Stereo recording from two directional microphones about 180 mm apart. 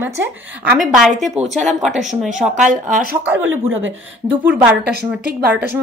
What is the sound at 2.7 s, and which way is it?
Speech, 45° right (ahead or behind).